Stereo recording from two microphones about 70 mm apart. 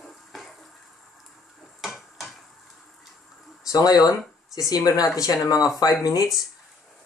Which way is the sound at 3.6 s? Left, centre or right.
Left.